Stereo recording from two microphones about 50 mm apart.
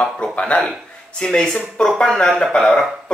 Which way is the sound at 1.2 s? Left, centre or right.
Centre.